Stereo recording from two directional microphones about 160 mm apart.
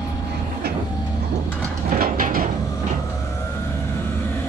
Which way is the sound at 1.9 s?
60° right (ahead or behind).